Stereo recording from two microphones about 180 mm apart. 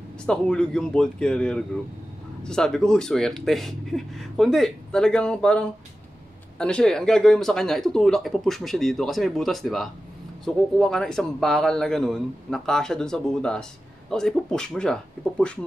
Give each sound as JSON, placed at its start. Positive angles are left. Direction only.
{"t": 0.3, "sound": "speech", "side_deg": 5}